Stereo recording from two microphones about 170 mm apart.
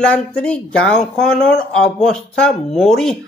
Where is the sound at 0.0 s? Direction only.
5° left (ahead or behind).